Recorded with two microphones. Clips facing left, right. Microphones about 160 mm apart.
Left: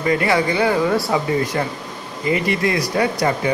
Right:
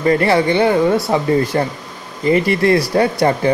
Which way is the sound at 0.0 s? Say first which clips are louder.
Right 4 dB; 40° right (ahead or behind).